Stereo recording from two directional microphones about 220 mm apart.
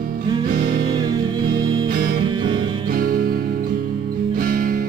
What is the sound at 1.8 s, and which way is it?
Music, 40° right (ahead or behind).